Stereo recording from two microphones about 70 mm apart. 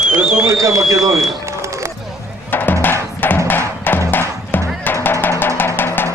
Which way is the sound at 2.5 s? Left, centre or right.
Left.